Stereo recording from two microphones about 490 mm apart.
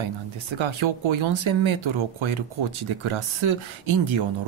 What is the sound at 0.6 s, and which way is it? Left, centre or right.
Speech, right.